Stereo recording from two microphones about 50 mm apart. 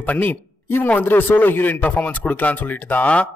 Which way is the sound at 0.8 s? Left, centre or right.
Left.